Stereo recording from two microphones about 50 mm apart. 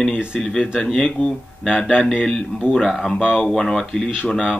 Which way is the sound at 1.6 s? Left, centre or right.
Centre.